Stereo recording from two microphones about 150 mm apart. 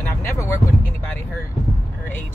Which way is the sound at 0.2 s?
20° left (ahead or behind).